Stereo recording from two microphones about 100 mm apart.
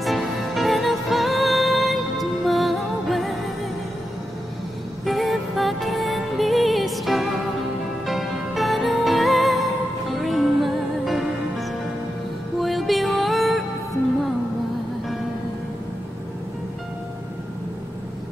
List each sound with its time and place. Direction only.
0.0 s music: centre (ahead or behind)
5.0 s music: centre (ahead or behind)
12.5 s music: centre (ahead or behind)